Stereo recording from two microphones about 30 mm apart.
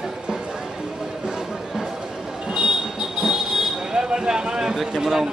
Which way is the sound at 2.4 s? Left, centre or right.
Right.